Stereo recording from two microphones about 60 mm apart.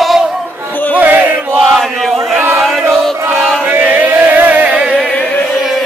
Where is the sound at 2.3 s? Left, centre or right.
Right.